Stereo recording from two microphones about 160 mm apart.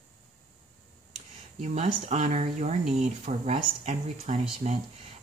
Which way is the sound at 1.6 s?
45° right (ahead or behind).